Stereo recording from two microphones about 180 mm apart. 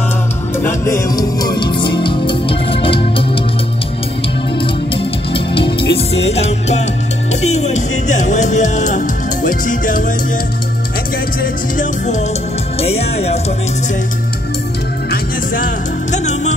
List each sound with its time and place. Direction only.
0.6 s music: 15° left (ahead or behind); by 3.0 s 30° left (ahead or behind)
4.6 s music: 30° left (ahead or behind)
5.9 s music: 70° left (ahead or behind)
6.2 s music: 35° left (ahead or behind)
16.1 s music: 40° left (ahead or behind)